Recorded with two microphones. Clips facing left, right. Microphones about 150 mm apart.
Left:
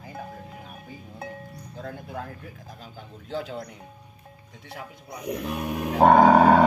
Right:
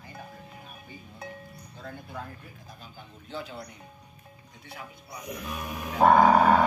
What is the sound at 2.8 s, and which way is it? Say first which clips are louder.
Speech: left 6 dB; 90° left.